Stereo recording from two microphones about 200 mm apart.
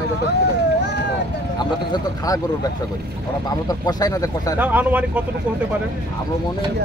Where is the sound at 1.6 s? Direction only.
20° left (ahead or behind).